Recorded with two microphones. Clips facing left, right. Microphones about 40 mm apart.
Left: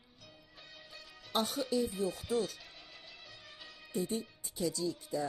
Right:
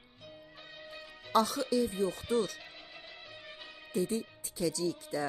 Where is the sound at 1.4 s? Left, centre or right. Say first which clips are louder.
Right 3 dB; right.